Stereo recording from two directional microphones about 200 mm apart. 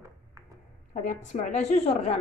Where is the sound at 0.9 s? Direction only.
40° left (ahead or behind).